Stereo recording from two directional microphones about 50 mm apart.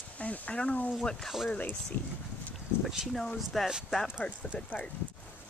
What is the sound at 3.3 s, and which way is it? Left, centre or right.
Speech, centre.